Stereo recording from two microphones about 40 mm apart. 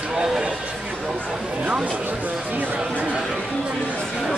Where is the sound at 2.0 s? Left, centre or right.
Right.